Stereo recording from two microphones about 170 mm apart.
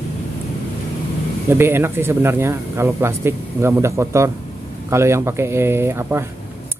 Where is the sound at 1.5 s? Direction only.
15° right (ahead or behind).